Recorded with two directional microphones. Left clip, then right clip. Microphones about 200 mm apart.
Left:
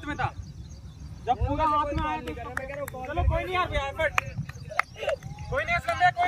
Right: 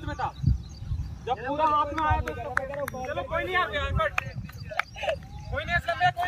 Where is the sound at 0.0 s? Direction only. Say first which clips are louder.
Left 1 dB; 5° left (ahead or behind).